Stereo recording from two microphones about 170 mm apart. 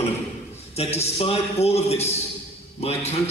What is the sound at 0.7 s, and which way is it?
A man's voice, 35° left (ahead or behind).